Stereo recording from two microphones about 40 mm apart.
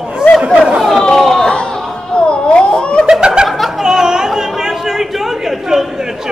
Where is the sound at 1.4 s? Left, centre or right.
Left.